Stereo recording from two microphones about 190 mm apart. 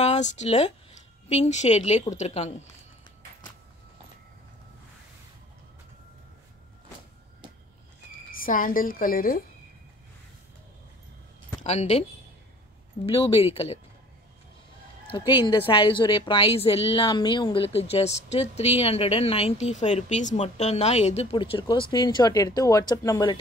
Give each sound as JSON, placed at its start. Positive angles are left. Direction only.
{"t": 0.0, "sound": "a woman's voice", "side_deg": 35}
{"t": 8.3, "sound": "a woman's voice", "side_deg": 45}
{"t": 11.6, "sound": "a woman's voice", "side_deg": 35}
{"t": 13.0, "sound": "a woman's voice", "side_deg": 30}
{"t": 15.0, "sound": "a woman's voice", "side_deg": 25}